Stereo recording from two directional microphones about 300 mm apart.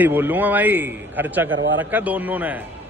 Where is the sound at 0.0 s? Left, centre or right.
Centre.